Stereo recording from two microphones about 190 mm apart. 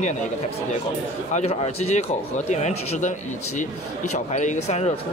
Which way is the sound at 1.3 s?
35° left (ahead or behind).